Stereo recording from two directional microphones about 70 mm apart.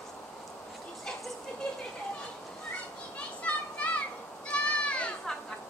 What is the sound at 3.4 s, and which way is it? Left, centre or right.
Children playing, centre.